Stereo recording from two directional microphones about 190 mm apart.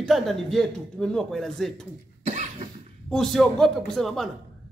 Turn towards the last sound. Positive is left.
turn(degrees=0)  # may be behind; listen again after turning